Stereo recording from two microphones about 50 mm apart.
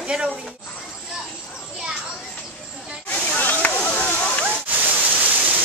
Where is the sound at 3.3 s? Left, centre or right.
Left.